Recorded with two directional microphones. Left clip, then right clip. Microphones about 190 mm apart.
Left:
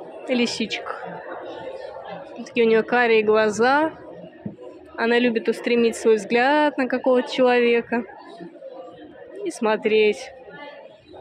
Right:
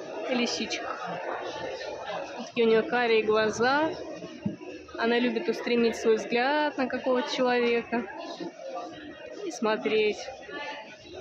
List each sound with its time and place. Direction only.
0.3 s a woman's voice: 25° left (ahead or behind)
2.5 s a woman's voice: 25° left (ahead or behind)
4.9 s a woman's voice: 25° left (ahead or behind)
9.5 s a woman's voice: 25° left (ahead or behind)